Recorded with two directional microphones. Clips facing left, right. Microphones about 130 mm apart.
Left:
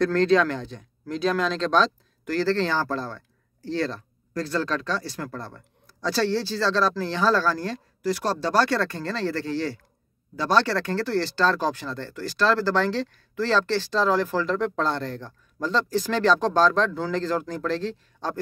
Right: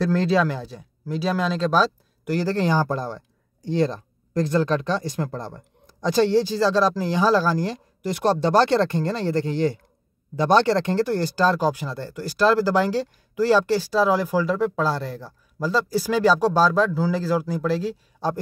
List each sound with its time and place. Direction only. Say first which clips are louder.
0.0 s speech: left 1 dB; 5° right (ahead or behind)